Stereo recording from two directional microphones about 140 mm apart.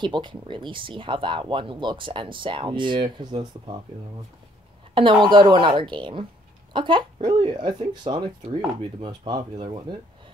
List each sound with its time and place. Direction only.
0.0 s speech: 35° right (ahead or behind)
4.9 s speech: 35° right (ahead or behind)